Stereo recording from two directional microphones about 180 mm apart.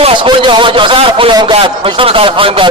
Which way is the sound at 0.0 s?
30° right (ahead or behind).